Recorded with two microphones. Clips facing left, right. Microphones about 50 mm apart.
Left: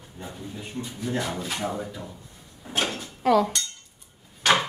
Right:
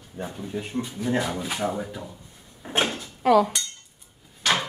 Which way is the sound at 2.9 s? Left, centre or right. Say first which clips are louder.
Right 2 dB; centre.